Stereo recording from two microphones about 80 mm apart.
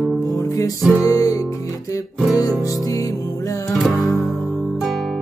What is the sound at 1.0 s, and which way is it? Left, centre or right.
Music, left.